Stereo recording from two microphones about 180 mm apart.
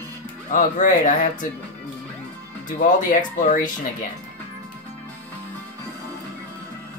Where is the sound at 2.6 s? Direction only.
50° left (ahead or behind).